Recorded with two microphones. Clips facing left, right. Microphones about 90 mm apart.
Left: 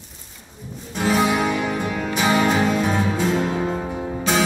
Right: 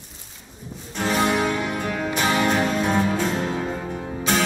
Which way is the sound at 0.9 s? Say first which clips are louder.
Left 2 dB; 5° left (ahead or behind).